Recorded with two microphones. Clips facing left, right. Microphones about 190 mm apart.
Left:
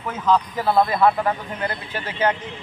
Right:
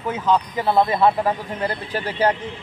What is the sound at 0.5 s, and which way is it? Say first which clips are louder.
Speech: right 1 dB; 20° right (ahead or behind).